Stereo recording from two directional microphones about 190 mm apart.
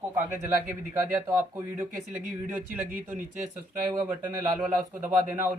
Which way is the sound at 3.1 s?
40° right (ahead or behind).